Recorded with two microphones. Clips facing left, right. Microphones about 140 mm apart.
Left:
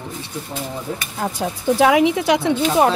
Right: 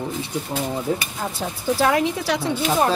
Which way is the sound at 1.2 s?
10° left (ahead or behind).